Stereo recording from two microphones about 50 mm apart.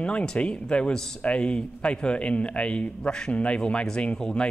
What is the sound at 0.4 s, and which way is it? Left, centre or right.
A man's voice, left.